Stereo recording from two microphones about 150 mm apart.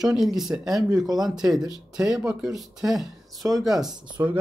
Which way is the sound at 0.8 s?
25° right (ahead or behind).